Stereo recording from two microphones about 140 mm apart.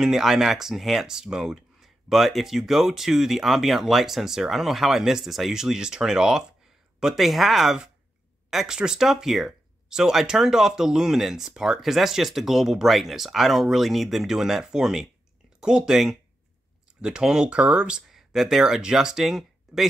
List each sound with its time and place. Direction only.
0.0 s speech: 5° right (ahead or behind)